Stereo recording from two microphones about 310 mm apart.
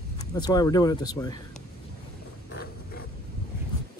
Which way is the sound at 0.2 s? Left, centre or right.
Centre.